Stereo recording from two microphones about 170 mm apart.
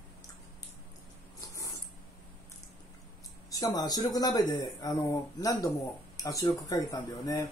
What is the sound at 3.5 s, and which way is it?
Speech, 20° left (ahead or behind).